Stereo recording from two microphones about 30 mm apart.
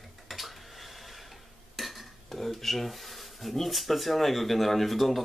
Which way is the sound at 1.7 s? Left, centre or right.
Centre.